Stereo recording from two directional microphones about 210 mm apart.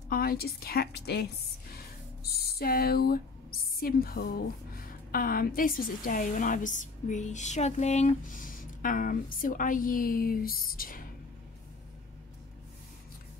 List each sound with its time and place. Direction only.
0.1 s a woman's voice: 45° left (ahead or behind)
2.2 s a woman's voice: 50° left (ahead or behind)